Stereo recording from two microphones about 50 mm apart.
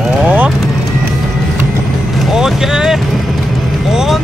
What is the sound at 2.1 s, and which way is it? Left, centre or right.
Vehicle, centre.